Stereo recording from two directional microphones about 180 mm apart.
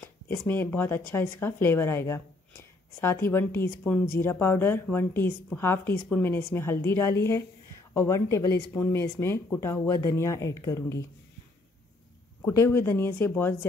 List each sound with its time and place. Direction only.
0.5 s a woman's voice: 10° left (ahead or behind)
12.4 s a woman's voice: 15° left (ahead or behind)